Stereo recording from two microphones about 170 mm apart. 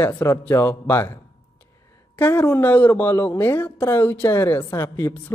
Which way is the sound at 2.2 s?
10° left (ahead or behind).